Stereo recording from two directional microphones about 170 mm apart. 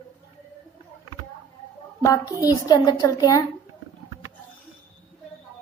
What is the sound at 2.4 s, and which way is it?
A woman's voice, 20° left (ahead or behind).